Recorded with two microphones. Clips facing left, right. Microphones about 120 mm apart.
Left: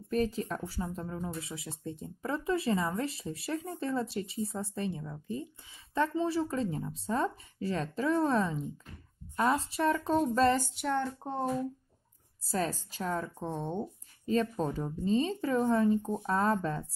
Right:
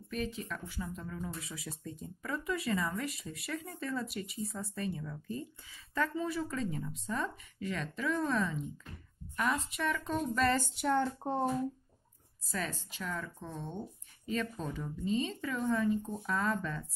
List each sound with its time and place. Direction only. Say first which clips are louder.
0.1 s speech: left 7 dB; 40° left (ahead or behind)
10.8 s speech: right 1 dB; 5° right (ahead or behind)
12.4 s speech: left 6 dB; 35° left (ahead or behind)